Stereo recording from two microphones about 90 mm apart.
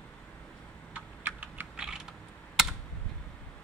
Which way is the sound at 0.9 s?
20° right (ahead or behind).